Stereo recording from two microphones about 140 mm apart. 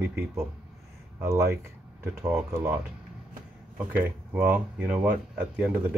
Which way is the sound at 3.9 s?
10° right (ahead or behind).